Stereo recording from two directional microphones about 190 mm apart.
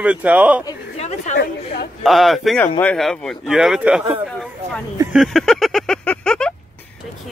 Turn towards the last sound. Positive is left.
turn(degrees=5)  # may be behind; listen again after turning